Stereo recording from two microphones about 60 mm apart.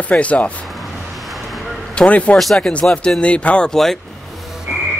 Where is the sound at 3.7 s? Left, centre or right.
Centre.